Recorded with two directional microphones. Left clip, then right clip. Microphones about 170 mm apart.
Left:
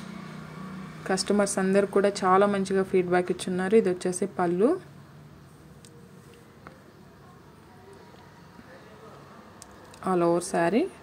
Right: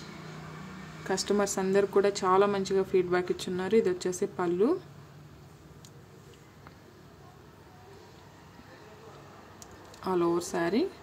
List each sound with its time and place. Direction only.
1.0 s speech: 25° left (ahead or behind)
10.0 s speech: 25° left (ahead or behind)